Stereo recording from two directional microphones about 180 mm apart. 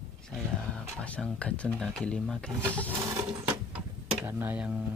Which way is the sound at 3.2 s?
20° right (ahead or behind).